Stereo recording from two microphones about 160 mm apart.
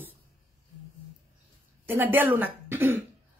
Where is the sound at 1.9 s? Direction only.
10° right (ahead or behind).